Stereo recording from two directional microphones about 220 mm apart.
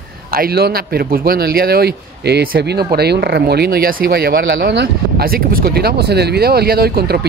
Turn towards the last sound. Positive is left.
turn(degrees=-45)  # may be behind; listen again after turning